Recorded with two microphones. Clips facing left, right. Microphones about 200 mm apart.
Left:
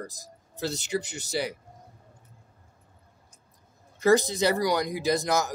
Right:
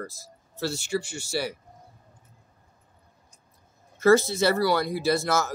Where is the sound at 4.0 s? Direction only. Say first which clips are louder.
Right 2 dB; 15° left (ahead or behind).